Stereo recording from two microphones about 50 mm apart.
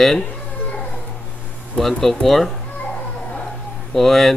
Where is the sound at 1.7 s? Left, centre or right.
Centre.